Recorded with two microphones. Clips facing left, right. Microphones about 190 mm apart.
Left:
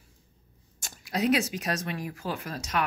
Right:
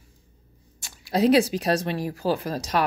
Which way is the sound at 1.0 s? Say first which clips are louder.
Right 7 dB; 30° right (ahead or behind).